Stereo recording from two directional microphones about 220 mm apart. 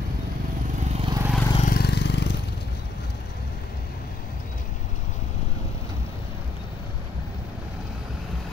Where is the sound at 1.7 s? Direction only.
50° left (ahead or behind).